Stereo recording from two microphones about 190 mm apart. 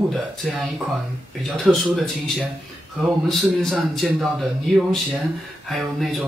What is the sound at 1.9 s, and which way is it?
A man's voice, centre (ahead or behind).